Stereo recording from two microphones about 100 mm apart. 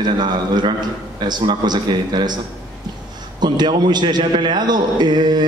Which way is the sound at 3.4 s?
45° right (ahead or behind).